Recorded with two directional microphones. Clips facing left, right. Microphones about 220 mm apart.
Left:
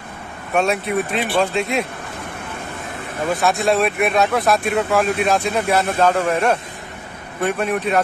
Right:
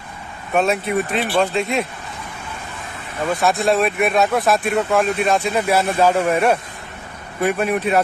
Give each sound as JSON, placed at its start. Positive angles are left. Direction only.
{"t": 0.6, "sound": "speech", "side_deg": 0}
{"t": 3.3, "sound": "speech", "side_deg": 0}